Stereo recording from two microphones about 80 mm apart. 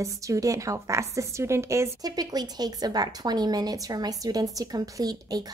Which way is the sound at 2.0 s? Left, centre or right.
Right.